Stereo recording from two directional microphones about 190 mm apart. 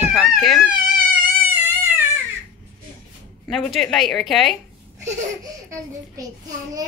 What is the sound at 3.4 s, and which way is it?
A woman's voice, centre (ahead or behind).